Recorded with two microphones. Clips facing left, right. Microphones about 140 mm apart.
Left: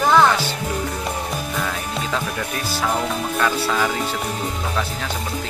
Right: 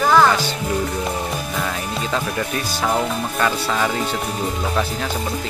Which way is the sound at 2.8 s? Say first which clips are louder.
Right 2 dB; 5° right (ahead or behind).